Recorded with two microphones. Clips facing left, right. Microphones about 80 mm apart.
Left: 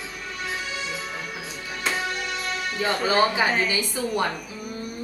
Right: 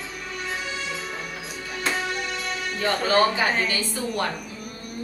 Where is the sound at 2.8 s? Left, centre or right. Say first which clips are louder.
Right 1 dB; centre.